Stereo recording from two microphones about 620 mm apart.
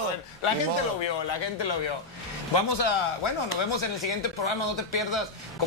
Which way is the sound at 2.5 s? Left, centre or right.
Left.